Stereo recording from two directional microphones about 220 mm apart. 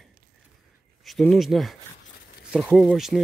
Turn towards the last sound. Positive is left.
turn(degrees=0)  # may be behind; listen again after turning